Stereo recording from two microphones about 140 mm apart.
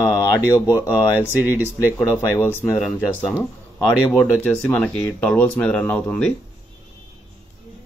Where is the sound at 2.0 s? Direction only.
20° left (ahead or behind).